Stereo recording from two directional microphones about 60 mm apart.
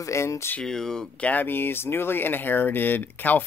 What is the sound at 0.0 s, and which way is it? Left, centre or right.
Speech, left.